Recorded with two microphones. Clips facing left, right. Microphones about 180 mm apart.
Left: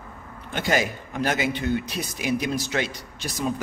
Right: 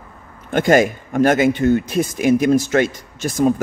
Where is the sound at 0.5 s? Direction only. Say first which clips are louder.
Right 10 dB; 50° right (ahead or behind).